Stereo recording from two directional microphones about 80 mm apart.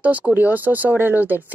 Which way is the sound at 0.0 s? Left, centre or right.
Centre.